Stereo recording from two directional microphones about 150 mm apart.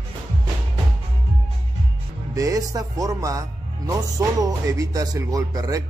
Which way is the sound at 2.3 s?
20° right (ahead or behind).